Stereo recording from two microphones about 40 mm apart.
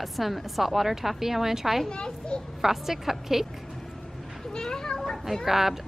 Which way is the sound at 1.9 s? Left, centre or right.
Left.